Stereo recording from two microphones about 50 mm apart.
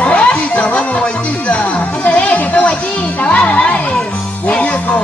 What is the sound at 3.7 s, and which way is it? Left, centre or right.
Music, left.